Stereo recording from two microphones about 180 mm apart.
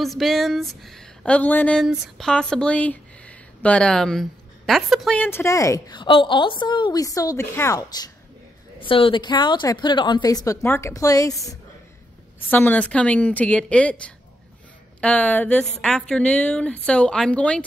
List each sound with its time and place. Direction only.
0.0 s a woman's voice: centre (ahead or behind)